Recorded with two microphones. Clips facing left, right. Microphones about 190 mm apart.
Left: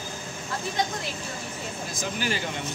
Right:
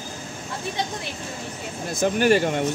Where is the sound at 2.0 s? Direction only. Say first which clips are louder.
Right 12 dB; 60° right (ahead or behind).